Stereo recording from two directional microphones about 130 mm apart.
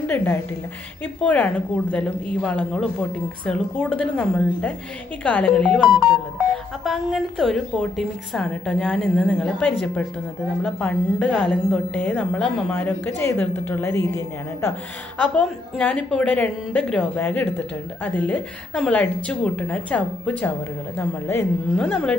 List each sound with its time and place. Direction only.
0.0 s a woman's voice: 15° left (ahead or behind)